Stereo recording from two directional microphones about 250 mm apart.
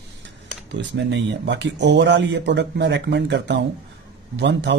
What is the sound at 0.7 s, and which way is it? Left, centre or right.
Speech, right.